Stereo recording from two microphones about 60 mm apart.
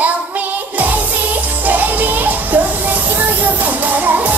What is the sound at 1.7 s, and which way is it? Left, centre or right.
Music, right.